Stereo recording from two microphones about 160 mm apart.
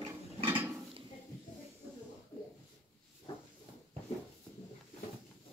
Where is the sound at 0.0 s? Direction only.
35° right (ahead or behind).